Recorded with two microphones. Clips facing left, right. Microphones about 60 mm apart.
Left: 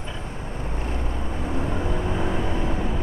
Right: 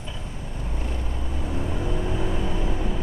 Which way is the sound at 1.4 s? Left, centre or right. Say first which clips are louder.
Left 2 dB; left.